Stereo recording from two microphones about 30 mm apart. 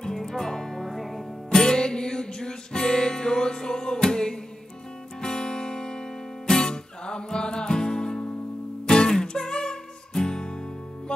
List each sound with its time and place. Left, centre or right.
0.0 s music: centre
0.8 s music: centre
1.5 s music: left